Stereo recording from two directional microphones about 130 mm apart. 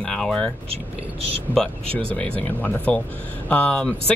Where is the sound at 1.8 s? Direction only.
45° right (ahead or behind).